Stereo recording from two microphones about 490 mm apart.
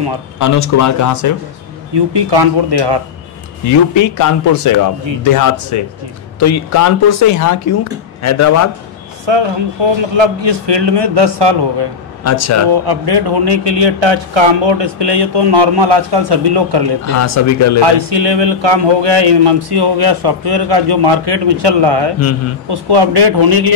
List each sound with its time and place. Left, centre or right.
0.4 s speech: left
2.0 s speech: right
3.6 s speech: left
9.2 s a man's voice: right
12.2 s speech: left
12.8 s speech: right
17.1 s speech: left
17.8 s speech: right